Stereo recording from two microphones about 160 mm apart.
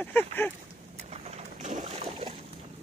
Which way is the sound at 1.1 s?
40° right (ahead or behind).